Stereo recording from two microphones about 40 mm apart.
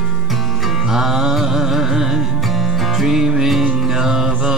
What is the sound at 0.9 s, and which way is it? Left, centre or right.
Music, centre.